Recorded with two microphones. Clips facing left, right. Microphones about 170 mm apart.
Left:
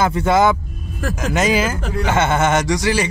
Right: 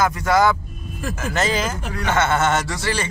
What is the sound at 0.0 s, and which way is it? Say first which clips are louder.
Speech: left 2 dB; 25° left (ahead or behind).